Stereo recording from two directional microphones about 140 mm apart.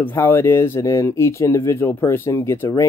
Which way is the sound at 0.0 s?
15° left (ahead or behind).